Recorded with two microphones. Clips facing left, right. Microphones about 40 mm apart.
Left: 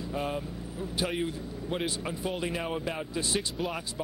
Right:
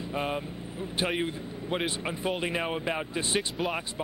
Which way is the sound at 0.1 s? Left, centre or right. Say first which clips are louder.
Right 2 dB; right.